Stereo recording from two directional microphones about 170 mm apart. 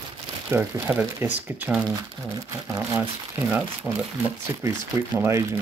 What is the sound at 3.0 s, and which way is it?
Speech, 10° right (ahead or behind).